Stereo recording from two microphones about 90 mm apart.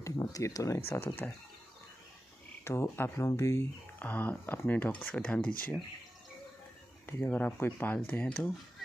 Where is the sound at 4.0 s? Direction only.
20° left (ahead or behind).